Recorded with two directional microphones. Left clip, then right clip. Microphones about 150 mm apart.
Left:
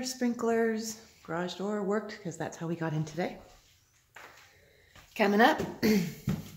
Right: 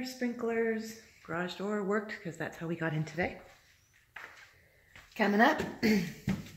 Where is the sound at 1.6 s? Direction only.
Centre (ahead or behind).